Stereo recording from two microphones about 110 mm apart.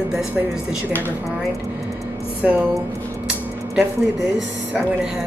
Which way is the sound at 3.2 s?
10° right (ahead or behind).